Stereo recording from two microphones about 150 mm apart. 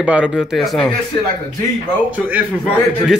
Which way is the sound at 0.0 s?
10° right (ahead or behind).